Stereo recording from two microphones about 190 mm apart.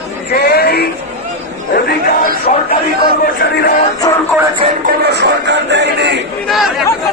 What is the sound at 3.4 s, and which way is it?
Speech, 60° left (ahead or behind).